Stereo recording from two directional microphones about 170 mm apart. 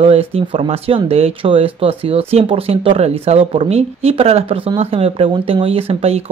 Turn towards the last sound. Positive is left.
turn(degrees=-35)  # may be behind; listen again after turning